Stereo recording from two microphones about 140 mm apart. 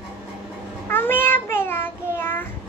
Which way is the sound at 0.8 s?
15° left (ahead or behind).